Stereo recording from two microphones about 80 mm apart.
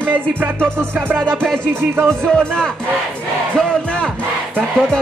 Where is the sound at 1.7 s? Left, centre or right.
Right.